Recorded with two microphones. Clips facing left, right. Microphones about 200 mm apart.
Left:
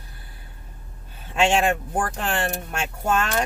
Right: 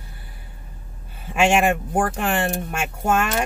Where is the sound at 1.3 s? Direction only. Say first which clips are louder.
Right 2 dB; 15° right (ahead or behind).